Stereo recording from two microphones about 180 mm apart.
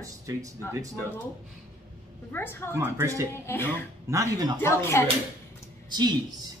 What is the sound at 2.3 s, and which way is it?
Speech, 10° left (ahead or behind).